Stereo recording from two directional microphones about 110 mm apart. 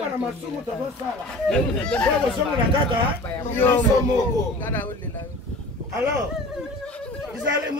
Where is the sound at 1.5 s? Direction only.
10° left (ahead or behind).